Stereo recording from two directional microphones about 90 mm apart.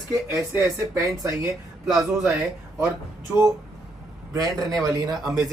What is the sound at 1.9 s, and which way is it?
Speech, 5° right (ahead or behind).